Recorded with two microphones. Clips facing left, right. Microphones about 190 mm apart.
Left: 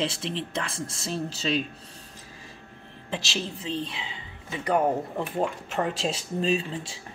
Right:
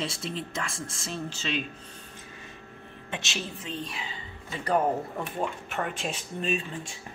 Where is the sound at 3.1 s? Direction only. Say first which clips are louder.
Left 4 dB; 30° left (ahead or behind).